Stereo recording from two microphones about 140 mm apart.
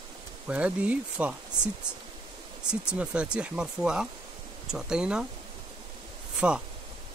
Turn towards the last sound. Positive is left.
turn(degrees=-5)  # may be behind; listen again after turning